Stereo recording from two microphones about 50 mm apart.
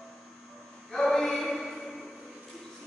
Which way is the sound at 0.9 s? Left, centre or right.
Centre.